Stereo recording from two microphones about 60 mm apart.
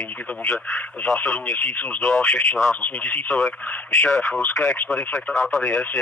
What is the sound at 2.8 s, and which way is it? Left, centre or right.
Speech, left.